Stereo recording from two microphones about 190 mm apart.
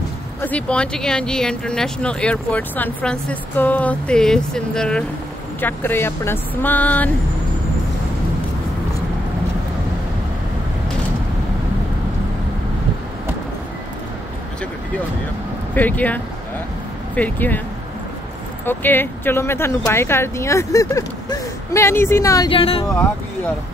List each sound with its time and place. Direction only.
0.4 s speech: 5° left (ahead or behind)
15.7 s speech: 10° left (ahead or behind)
18.7 s speech: 10° left (ahead or behind)
22.5 s speech: 30° left (ahead or behind)